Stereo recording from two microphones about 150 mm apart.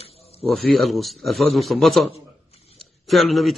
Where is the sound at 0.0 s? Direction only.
40° left (ahead or behind).